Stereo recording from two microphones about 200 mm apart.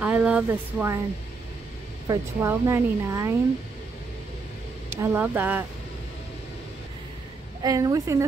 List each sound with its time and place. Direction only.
0.0 s speech: 5° right (ahead or behind)
2.0 s speech: 15° right (ahead or behind)
4.9 s speech: 15° right (ahead or behind)
7.6 s speech: 15° right (ahead or behind)